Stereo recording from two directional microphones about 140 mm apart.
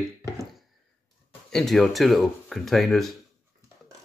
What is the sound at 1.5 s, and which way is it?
Speech, centre (ahead or behind).